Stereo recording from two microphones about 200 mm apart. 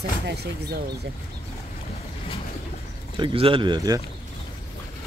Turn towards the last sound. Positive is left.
turn(degrees=-20)  # may be behind; listen again after turning